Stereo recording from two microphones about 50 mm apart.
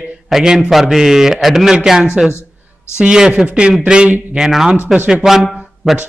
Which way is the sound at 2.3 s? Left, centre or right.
Left.